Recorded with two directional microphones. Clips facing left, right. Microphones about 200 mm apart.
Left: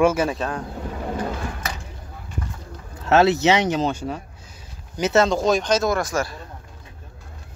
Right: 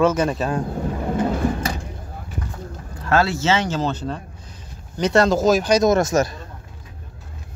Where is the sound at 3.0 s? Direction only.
20° left (ahead or behind); by 6.3 s 20° right (ahead or behind).